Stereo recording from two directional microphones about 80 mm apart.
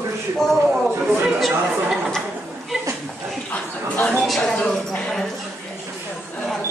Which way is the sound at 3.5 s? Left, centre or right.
Centre.